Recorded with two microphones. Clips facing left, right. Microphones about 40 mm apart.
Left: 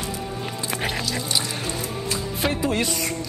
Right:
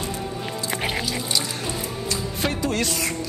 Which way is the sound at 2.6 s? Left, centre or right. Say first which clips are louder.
Left 1 dB; centre.